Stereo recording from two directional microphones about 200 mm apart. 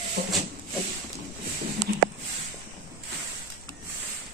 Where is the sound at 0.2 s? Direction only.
50° right (ahead or behind).